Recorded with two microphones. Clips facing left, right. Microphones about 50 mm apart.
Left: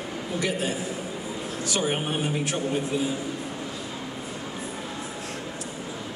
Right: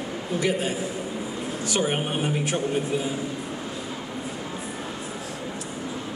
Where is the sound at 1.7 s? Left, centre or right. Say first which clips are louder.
Right 1 dB; centre.